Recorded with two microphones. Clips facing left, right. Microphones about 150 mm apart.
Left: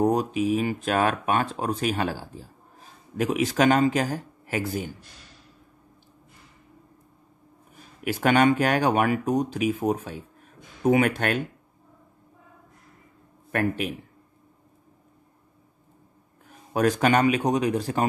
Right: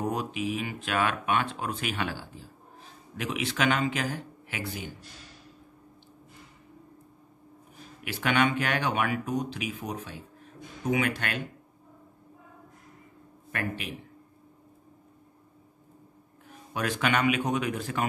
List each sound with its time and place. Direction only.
0.0 s speech: 40° left (ahead or behind)
8.0 s speech: 45° left (ahead or behind)
13.5 s speech: 45° left (ahead or behind)
16.7 s speech: 40° left (ahead or behind)